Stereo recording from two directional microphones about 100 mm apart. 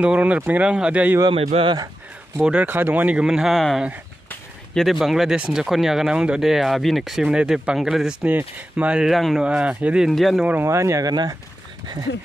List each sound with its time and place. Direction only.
0.0 s speech: 10° right (ahead or behind)
1.3 s speech: 65° right (ahead or behind)
2.4 s speech: 15° right (ahead or behind)
10.4 s speech: 20° right (ahead or behind)
10.7 s speech: 30° right (ahead or behind)